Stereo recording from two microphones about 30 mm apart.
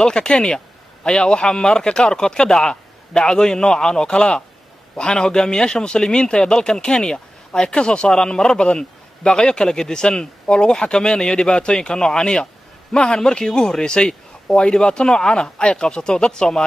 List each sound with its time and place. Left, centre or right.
0.0 s speech: left